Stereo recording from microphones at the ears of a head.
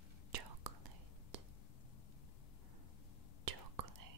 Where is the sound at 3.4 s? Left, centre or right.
Right.